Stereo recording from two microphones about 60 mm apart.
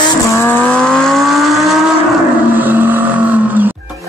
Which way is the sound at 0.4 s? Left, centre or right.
Left.